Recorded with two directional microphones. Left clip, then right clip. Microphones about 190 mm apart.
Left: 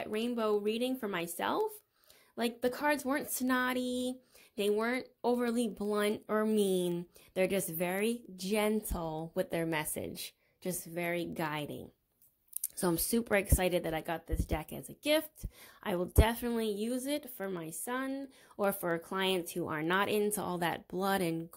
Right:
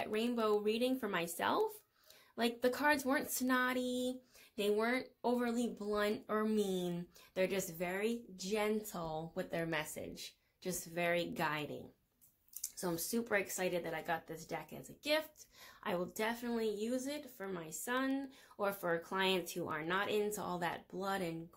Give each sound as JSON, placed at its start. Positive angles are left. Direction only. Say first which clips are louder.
{"t": 0.0, "sound": "speech", "louder": "left 2 dB", "side_deg": 40}
{"t": 10.6, "sound": "speech", "louder": "left 1 dB", "side_deg": 35}